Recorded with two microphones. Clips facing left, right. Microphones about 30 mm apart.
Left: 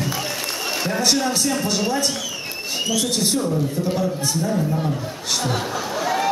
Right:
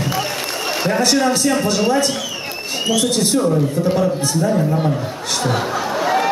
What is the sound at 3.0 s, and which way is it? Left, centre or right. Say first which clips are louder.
Speech: right 5 dB; centre.